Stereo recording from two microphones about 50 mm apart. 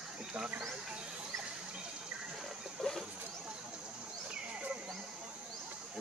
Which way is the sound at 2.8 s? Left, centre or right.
Centre.